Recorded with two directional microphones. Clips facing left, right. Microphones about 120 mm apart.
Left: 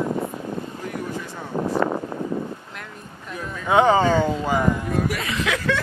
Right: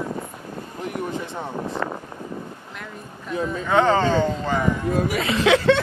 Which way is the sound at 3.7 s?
15° left (ahead or behind).